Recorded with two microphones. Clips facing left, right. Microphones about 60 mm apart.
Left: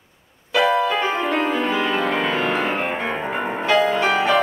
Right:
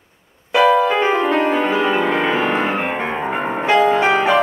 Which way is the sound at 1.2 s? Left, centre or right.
Centre.